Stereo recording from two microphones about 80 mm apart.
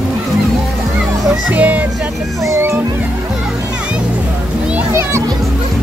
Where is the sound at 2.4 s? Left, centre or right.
Right.